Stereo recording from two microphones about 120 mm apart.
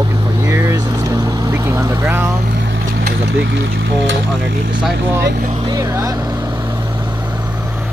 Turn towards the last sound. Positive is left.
turn(degrees=-30)  # may be behind; listen again after turning